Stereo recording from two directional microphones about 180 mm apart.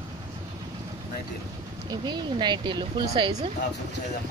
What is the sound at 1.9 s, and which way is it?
Speech, 25° right (ahead or behind).